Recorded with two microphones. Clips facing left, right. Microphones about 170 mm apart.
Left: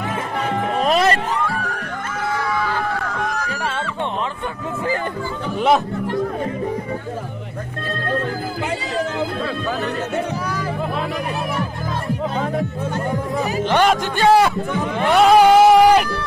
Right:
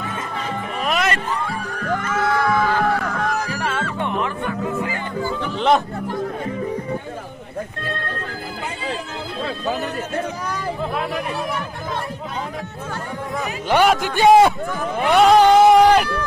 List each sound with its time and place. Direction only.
0.7 s music: 35° left (ahead or behind)
1.3 s music: 90° left
13.7 s a man's voice: 10° right (ahead or behind)
15.0 s a sound: centre (ahead or behind)